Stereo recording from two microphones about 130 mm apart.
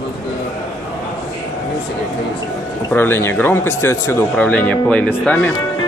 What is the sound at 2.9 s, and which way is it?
Speech, 15° left (ahead or behind).